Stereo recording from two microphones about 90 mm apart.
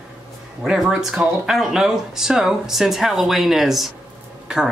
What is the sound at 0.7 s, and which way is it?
Speech, 5° right (ahead or behind).